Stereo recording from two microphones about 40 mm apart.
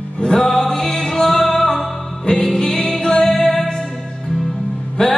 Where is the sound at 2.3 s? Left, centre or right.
Left; by 3.7 s centre.